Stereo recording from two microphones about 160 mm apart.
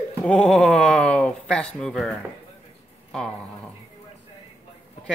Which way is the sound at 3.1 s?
5° left (ahead or behind).